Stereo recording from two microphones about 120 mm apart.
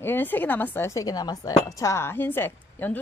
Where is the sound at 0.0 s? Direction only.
15° left (ahead or behind).